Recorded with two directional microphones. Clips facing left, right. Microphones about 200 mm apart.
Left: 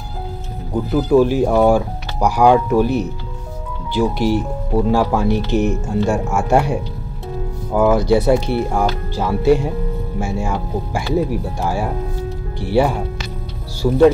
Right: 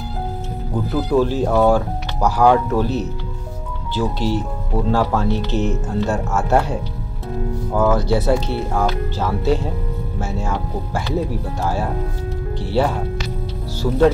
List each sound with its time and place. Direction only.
0.9 s speech: 15° left (ahead or behind)